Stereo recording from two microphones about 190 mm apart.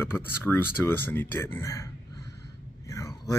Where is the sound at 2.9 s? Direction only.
15° left (ahead or behind).